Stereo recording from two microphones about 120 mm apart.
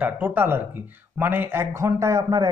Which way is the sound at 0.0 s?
15° right (ahead or behind).